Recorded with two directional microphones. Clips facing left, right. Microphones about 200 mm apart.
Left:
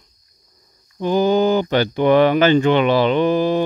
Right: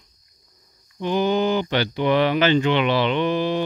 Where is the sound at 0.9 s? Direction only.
40° left (ahead or behind).